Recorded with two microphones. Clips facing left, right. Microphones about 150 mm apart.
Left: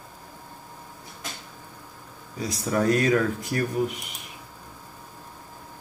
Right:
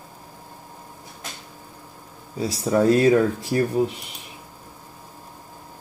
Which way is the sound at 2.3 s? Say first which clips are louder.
Right 5 dB; 30° right (ahead or behind).